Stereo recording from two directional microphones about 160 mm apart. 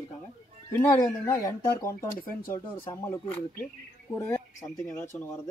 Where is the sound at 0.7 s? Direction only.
15° left (ahead or behind).